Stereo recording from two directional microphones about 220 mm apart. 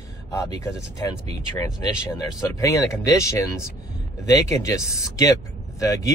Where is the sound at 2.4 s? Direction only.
15° left (ahead or behind).